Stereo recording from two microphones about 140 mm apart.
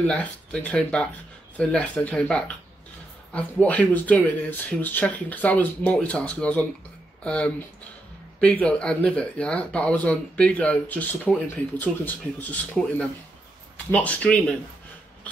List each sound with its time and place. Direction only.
0.0 s speech: 10° left (ahead or behind)